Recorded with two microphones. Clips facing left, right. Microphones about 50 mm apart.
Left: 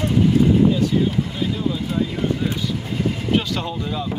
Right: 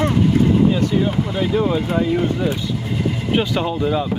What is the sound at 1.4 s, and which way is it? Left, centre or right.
Speech, right.